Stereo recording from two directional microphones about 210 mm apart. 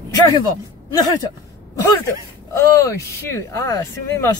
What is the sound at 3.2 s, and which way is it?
Speech, 10° left (ahead or behind).